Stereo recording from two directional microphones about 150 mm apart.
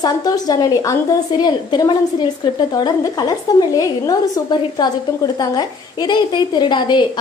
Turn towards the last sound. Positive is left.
turn(degrees=30)  # may be behind; listen again after turning